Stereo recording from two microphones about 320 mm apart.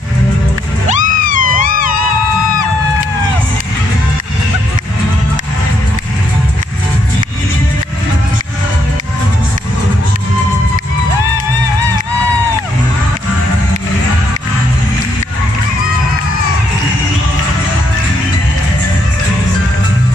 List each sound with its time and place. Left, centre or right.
0.8 s music: right